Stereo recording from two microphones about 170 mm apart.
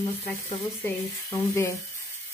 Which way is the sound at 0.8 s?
15° left (ahead or behind).